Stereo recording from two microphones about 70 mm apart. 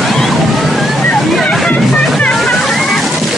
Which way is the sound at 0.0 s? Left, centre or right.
Centre.